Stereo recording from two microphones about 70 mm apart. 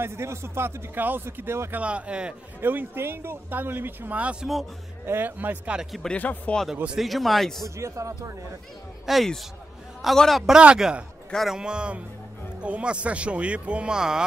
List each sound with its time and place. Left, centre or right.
0.0 s speech: right
1.8 s speech: centre
2.6 s speech: right
5.0 s speech: right
5.8 s speech: centre
6.0 s speech: left
7.0 s speech: centre
7.6 s a man's voice: right
9.0 s speech: centre
10.6 s speech: centre